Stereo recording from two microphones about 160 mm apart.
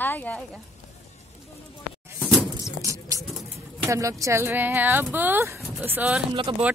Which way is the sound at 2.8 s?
20° right (ahead or behind).